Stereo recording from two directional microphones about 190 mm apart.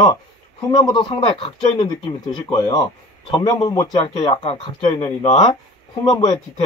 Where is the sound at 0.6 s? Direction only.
20° left (ahead or behind).